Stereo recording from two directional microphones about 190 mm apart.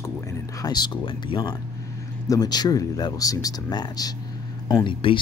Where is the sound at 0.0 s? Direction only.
15° left (ahead or behind).